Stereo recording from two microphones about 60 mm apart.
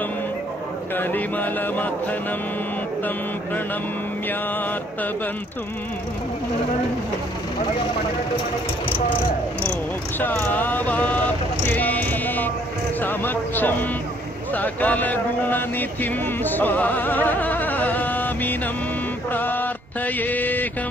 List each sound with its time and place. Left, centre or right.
0.9 s speech: left
10.5 s speech: left
19.3 s mantra: left